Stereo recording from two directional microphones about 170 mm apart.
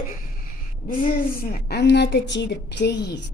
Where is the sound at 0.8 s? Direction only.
60° left (ahead or behind).